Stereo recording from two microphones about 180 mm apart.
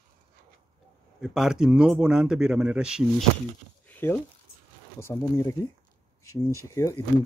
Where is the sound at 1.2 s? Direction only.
Centre (ahead or behind).